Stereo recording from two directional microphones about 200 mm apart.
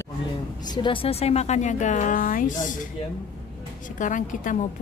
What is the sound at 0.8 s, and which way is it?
Speech, 30° left (ahead or behind).